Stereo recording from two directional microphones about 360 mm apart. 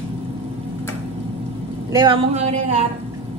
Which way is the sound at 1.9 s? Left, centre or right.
Centre.